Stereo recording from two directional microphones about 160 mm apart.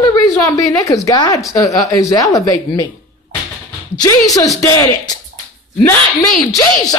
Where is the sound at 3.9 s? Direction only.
25° left (ahead or behind).